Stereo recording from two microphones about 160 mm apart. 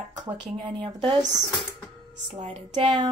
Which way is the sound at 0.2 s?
30° right (ahead or behind).